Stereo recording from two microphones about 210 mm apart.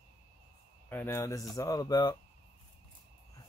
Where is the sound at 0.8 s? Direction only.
10° left (ahead or behind).